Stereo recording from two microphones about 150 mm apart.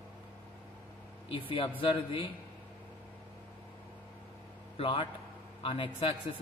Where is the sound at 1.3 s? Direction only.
35° left (ahead or behind).